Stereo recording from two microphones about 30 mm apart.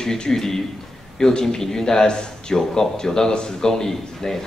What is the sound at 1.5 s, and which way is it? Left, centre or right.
A man's voice, centre.